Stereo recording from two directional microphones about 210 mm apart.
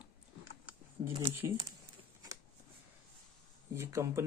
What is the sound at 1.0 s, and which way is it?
Speech, 15° right (ahead or behind).